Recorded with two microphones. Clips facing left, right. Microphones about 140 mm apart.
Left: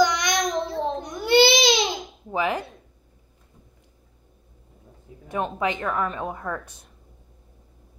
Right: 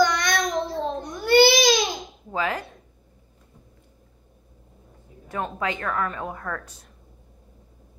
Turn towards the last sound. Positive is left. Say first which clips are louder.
# left 2 dB
turn(degrees=15)  # may be behind; listen again after turning